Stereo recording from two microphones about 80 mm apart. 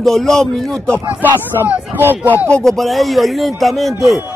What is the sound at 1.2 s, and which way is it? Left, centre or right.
Speech, right.